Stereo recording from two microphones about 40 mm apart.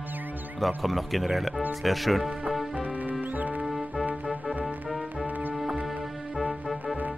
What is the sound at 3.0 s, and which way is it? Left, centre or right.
Music, right.